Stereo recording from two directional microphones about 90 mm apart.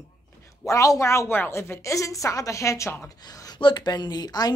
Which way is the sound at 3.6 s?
60° left (ahead or behind).